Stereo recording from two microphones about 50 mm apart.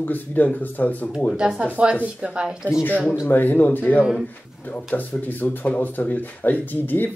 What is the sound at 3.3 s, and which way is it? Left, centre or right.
Speech, left.